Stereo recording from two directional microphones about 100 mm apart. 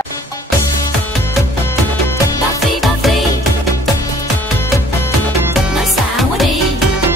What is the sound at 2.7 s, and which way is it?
Music, centre (ahead or behind).